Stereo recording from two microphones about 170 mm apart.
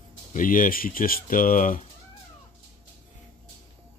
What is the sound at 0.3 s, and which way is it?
Speech, 55° left (ahead or behind).